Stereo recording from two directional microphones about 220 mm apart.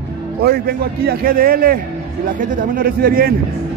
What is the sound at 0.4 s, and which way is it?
Speech, 45° right (ahead or behind).